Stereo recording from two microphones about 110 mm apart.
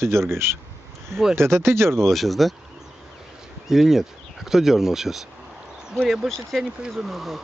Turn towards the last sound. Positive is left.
turn(degrees=0)  # may be behind; listen again after turning